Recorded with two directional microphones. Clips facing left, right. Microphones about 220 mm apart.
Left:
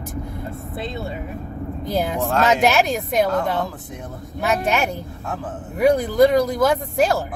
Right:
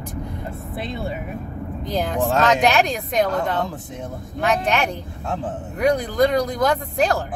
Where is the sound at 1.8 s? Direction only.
5° left (ahead or behind).